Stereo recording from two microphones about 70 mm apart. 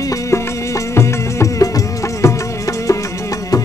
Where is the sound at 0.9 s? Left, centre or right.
Left.